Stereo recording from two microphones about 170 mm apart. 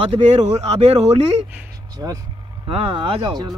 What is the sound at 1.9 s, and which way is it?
Speech, 20° right (ahead or behind).